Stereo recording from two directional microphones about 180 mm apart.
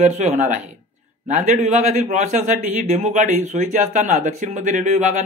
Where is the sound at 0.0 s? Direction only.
40° right (ahead or behind).